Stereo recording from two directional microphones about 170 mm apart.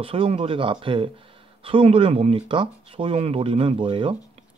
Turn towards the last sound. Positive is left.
turn(degrees=-30)  # may be behind; listen again after turning